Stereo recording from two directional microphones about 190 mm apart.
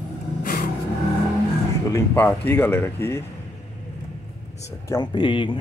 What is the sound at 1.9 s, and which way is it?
Speech, 10° left (ahead or behind).